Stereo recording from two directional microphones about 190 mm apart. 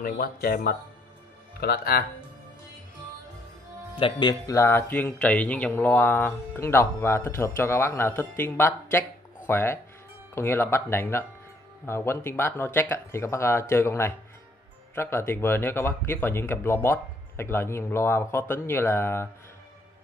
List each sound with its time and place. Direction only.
0.0 s speech: 50° left (ahead or behind)
3.9 s speech: 25° left (ahead or behind)